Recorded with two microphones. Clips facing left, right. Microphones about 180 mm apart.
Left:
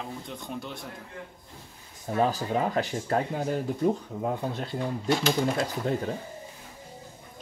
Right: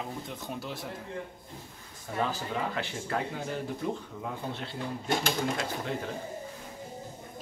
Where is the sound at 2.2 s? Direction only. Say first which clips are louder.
Left 6 dB; 40° left (ahead or behind).